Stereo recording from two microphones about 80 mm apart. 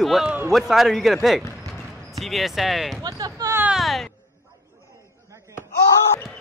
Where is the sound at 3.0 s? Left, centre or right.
Right.